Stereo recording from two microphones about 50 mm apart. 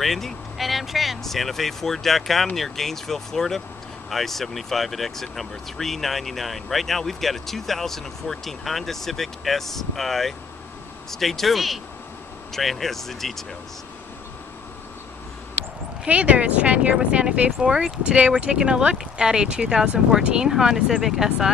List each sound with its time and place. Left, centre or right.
0.0 s speech: centre
16.1 s speech: right; by 21.5 s centre